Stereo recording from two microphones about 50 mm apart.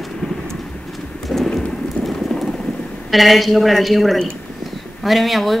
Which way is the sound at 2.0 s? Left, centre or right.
Centre.